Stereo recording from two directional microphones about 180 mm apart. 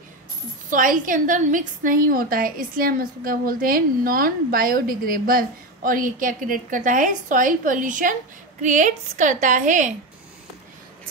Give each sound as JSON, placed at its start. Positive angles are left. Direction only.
{"t": 0.7, "sound": "a woman's voice", "side_deg": -50}